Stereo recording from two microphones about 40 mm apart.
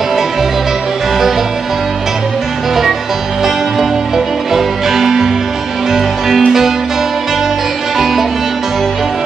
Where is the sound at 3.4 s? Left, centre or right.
Centre.